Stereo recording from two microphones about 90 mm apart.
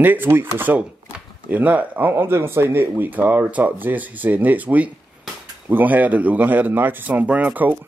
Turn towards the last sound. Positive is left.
turn(degrees=-20)  # may be behind; listen again after turning